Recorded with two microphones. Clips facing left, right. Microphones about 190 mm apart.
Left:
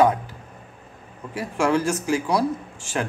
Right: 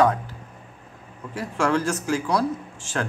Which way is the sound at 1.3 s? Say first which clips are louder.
Left 1 dB; 10° left (ahead or behind).